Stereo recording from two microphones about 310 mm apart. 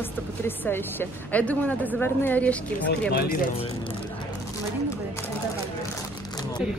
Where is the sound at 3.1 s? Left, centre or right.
Left.